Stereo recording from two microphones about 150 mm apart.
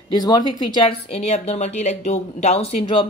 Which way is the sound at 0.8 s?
40° left (ahead or behind).